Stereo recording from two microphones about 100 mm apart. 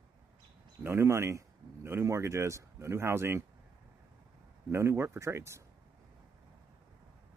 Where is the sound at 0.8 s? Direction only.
25° right (ahead or behind).